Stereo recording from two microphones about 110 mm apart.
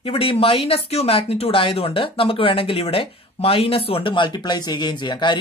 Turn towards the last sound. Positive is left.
turn(degrees=45)  # may be behind; listen again after turning